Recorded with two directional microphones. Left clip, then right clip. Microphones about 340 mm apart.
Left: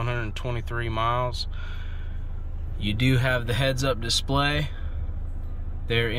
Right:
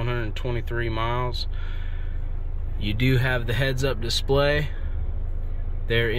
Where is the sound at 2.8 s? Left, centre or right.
Centre.